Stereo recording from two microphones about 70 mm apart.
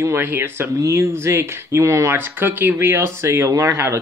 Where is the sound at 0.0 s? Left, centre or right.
Right.